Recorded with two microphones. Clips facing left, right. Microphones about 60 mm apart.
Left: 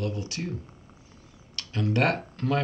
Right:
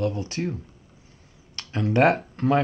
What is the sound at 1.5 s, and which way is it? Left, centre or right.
Speech, right.